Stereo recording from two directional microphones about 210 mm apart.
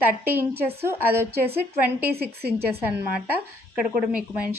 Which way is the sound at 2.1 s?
50° right (ahead or behind).